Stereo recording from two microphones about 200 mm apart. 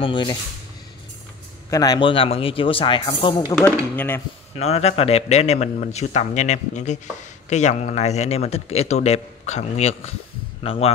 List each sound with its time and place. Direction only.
0.0 s speech: 25° left (ahead or behind)
1.7 s speech: 20° left (ahead or behind)
3.5 s speech: 10° left (ahead or behind)
4.6 s speech: 30° left (ahead or behind)